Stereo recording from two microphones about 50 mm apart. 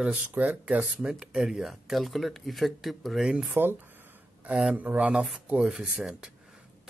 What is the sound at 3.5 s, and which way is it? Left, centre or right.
Speech, right.